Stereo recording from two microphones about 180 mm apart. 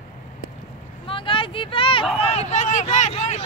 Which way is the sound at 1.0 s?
30° left (ahead or behind).